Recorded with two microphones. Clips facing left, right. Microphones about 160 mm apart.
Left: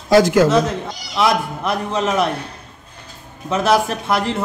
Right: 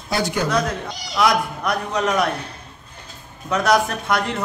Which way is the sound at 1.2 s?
25° left (ahead or behind).